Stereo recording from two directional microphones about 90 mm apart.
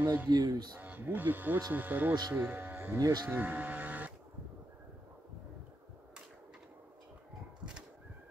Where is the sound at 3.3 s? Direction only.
20° right (ahead or behind).